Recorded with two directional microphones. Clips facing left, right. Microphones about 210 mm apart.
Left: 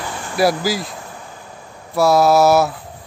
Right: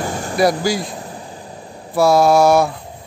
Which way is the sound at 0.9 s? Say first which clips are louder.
Right 4 dB; 30° right (ahead or behind).